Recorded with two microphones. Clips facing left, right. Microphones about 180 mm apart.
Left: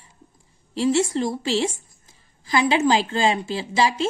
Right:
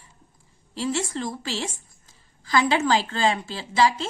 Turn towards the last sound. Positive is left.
turn(degrees=15)  # may be behind; listen again after turning